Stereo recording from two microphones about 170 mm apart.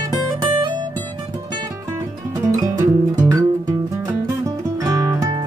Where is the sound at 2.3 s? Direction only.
20° right (ahead or behind).